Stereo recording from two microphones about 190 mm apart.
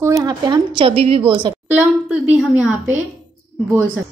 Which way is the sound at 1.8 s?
10° right (ahead or behind).